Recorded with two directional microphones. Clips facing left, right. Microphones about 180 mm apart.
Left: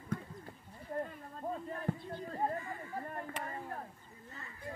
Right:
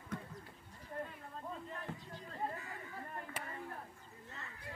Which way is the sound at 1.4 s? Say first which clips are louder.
Left 8 dB; 45° left (ahead or behind).